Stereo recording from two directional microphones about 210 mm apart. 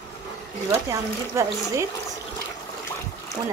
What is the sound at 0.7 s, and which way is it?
Speech, 15° right (ahead or behind).